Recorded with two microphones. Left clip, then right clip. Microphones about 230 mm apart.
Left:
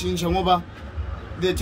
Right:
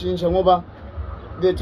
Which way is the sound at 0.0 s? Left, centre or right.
Left.